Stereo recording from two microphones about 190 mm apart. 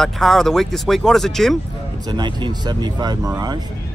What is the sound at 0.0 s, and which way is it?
Speech, centre (ahead or behind).